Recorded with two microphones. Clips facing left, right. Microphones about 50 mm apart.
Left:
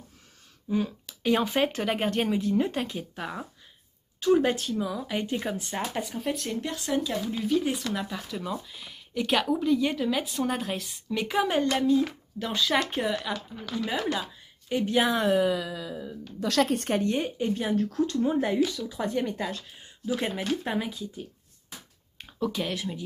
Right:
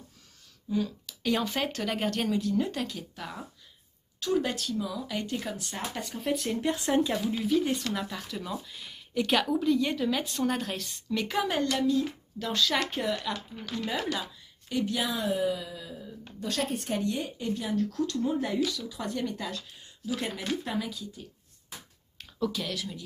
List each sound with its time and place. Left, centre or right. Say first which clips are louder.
0.7 s speech: left 2 dB; left
6.0 s speech: even; centre
6.6 s speech: right 5 dB; right
7.2 s speech: even; centre
11.6 s speech: left 3 dB; left
12.4 s speech: left 2 dB; centre
14.7 s a woman's voice: left 5 dB; left
15.2 s a sound: left 5 dB; left
16.3 s a woman's voice: left 7 dB; left
16.9 s speech: left 4 dB; left